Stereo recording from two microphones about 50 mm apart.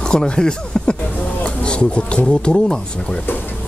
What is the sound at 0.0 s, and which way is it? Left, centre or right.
Speech, centre.